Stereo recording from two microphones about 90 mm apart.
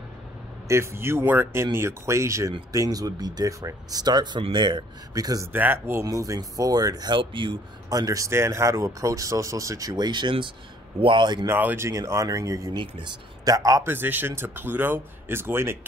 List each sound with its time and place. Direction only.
0.7 s speech: 30° right (ahead or behind); by 4.8 s 60° right (ahead or behind)
5.1 s speech: 45° right (ahead or behind)
5.5 s speech: 25° right (ahead or behind)
6.0 s speech: 40° right (ahead or behind)
7.2 s speech: 65° right (ahead or behind)
7.9 s speech: 40° right (ahead or behind); by 11.4 s 60° right (ahead or behind)
11.4 s speech: 25° right (ahead or behind)
12.7 s speech: 65° right (ahead or behind)
13.5 s speech: 40° right (ahead or behind)
13.8 s speech: 20° right (ahead or behind)